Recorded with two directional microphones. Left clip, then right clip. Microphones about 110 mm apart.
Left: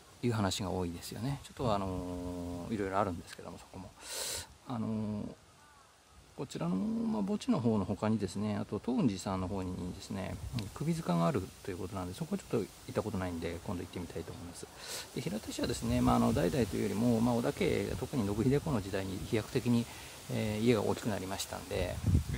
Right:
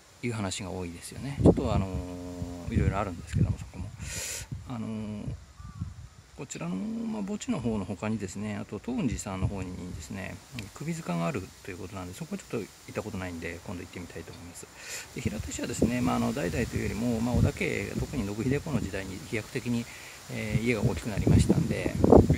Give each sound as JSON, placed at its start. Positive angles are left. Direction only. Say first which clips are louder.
{"t": 0.2, "sound": "speech", "louder": "even", "side_deg": 25}
{"t": 4.1, "sound": "a sound", "louder": "right 2 dB", "side_deg": 25}
{"t": 6.4, "sound": "speech", "louder": "even", "side_deg": 25}